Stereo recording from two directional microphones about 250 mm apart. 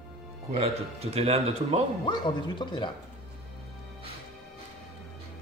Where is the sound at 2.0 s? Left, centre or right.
Centre.